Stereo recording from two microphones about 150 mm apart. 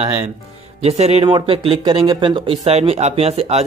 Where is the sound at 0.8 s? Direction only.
45° right (ahead or behind).